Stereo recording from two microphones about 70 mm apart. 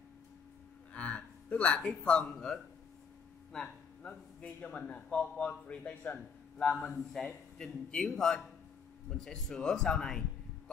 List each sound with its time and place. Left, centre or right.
0.9 s speech: centre
3.5 s a sound: centre
4.1 s a man's voice: left
6.9 s a man's voice: centre